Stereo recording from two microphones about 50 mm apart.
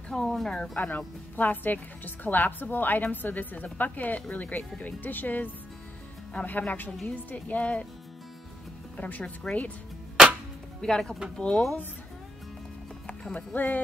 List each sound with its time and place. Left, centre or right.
0.1 s speech: centre
0.7 s speech: left
1.3 s a woman's voice: left
6.9 s a woman's voice: centre
7.3 s speech: left
8.9 s speech: left
10.8 s speech: centre
13.0 s speech: left